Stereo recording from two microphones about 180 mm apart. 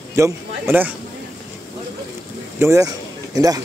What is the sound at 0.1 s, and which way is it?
Speech, 15° right (ahead or behind).